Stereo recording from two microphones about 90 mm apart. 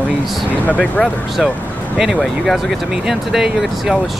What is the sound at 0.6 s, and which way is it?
Speech, 15° left (ahead or behind).